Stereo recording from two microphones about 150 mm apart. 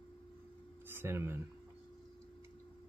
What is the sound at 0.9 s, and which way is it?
Speech, 15° right (ahead or behind).